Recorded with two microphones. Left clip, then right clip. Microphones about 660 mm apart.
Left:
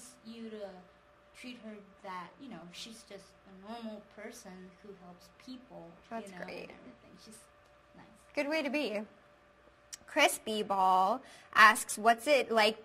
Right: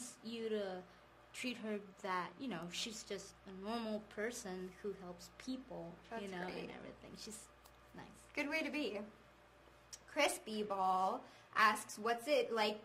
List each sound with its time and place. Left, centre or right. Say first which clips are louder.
0.2 s a sound: right 6 dB; centre
2.0 s a woman's voice: right 2 dB; centre
6.1 s a woman's voice: left 5 dB; left
8.4 s a woman's voice: left 7 dB; left